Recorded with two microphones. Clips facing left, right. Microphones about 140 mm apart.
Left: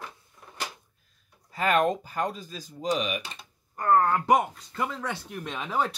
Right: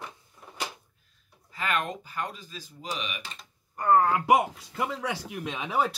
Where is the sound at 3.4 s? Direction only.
Centre (ahead or behind).